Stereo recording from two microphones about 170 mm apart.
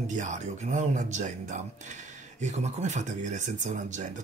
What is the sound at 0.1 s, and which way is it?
Speech, 45° right (ahead or behind).